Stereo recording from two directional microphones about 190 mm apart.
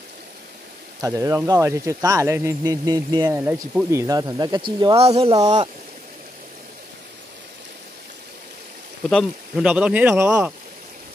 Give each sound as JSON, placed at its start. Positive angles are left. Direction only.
{"t": 1.0, "sound": "speech", "side_deg": -15}
{"t": 9.1, "sound": "speech", "side_deg": -5}